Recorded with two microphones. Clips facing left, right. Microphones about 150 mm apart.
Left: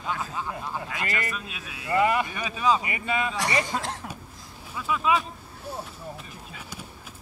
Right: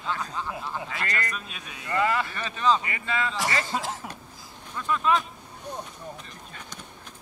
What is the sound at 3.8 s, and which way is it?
Speech, centre (ahead or behind).